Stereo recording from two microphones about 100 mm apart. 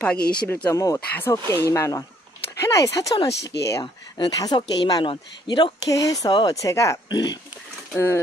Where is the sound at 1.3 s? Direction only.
30° left (ahead or behind).